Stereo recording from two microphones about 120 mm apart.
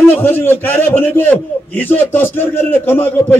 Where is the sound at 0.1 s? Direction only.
15° left (ahead or behind).